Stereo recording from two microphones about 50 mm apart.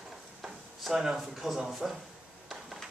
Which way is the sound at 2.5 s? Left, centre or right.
Centre.